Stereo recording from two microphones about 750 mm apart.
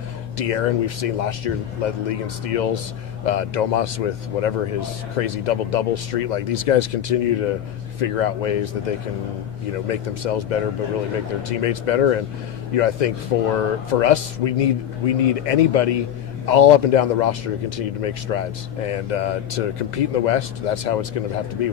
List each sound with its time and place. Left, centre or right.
0.4 s speech: left
9.8 s speech: left